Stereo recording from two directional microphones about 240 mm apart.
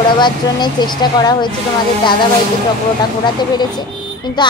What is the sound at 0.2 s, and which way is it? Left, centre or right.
Speech, centre.